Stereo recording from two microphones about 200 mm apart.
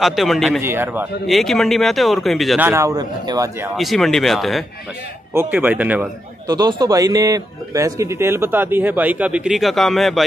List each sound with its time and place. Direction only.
0.0 s a man's voice: centre (ahead or behind)
0.6 s speech: 10° right (ahead or behind)
1.2 s a man's voice: centre (ahead or behind)
2.7 s speech: 15° right (ahead or behind)
3.7 s a man's voice: centre (ahead or behind)
5.3 s speech: 10° right (ahead or behind)
6.4 s speech: 20° right (ahead or behind); by 10.2 s centre (ahead or behind)